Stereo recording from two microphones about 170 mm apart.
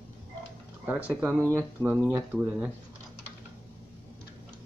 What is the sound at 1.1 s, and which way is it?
Speech, 10° right (ahead or behind).